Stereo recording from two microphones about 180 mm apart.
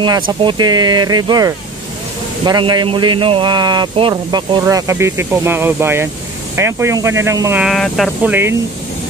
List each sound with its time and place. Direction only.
0.0 s speech: 25° right (ahead or behind)
7.6 s speech: centre (ahead or behind)
8.2 s speech: 10° right (ahead or behind)